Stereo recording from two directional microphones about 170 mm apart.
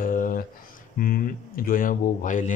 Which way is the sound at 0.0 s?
55° left (ahead or behind).